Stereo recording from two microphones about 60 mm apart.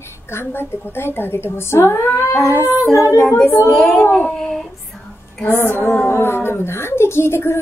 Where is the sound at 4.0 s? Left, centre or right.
Left.